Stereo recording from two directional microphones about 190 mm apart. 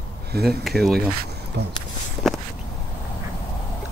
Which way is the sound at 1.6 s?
60° right (ahead or behind).